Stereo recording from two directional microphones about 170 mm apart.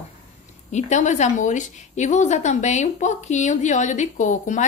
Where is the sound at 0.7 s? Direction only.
45° left (ahead or behind).